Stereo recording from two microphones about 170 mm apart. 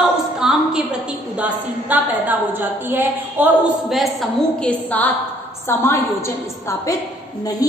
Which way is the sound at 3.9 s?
Centre (ahead or behind).